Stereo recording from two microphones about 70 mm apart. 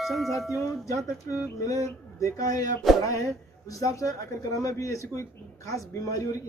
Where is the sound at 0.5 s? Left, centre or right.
Left.